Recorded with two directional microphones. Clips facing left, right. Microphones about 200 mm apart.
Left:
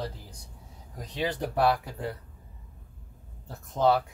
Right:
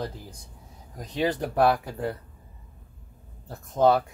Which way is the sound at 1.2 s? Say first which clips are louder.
Right 4 dB; 50° right (ahead or behind).